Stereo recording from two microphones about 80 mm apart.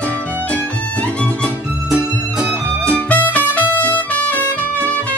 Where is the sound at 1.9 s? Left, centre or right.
Centre.